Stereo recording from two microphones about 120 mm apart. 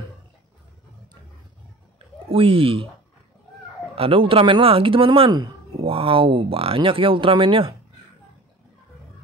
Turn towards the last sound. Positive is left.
turn(degrees=-45)  # may be behind; listen again after turning